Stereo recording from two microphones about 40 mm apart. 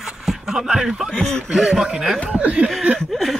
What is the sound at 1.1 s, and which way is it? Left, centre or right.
Speech, centre.